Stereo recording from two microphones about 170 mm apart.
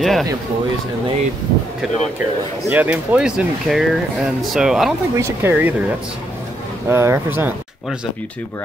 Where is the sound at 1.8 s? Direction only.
Centre (ahead or behind).